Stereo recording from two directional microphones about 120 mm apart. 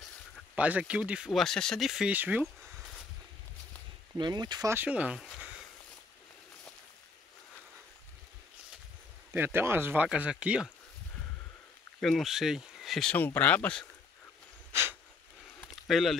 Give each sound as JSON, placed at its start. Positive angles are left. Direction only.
{"t": 0.6, "sound": "speech", "side_deg": -10}
{"t": 4.2, "sound": "speech", "side_deg": -35}
{"t": 4.6, "sound": "speech", "side_deg": -15}
{"t": 9.3, "sound": "speech", "side_deg": -20}
{"t": 10.0, "sound": "speech", "side_deg": -10}
{"t": 12.0, "sound": "speech", "side_deg": 0}
{"t": 13.1, "sound": "speech", "side_deg": 15}
{"t": 14.7, "sound": "a sound", "side_deg": -20}
{"t": 15.7, "sound": "a sound", "side_deg": 0}